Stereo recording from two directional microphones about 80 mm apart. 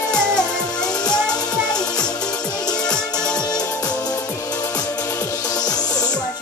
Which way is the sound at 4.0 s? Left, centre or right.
Left.